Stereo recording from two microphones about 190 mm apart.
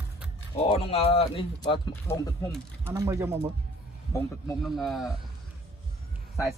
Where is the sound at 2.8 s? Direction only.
15° right (ahead or behind).